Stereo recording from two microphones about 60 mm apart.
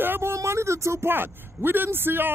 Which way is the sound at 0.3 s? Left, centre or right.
Right.